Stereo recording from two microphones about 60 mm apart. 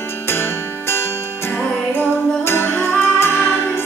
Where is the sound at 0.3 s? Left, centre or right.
Left.